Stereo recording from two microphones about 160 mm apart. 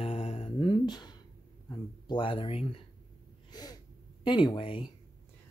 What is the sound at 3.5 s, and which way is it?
Gasp, 25° left (ahead or behind).